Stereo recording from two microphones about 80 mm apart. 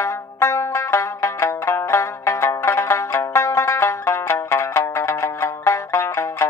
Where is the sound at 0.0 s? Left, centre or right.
Left.